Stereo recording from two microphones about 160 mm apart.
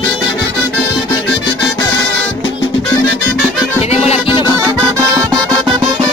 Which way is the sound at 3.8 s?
40° left (ahead or behind).